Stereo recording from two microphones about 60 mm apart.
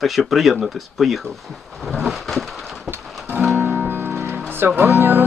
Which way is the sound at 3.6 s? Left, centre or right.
Right.